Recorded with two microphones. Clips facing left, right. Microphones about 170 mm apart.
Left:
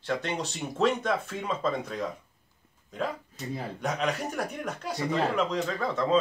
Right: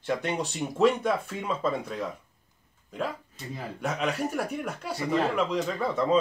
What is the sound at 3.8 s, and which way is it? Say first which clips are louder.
Speech: right 2 dB; 5° right (ahead or behind).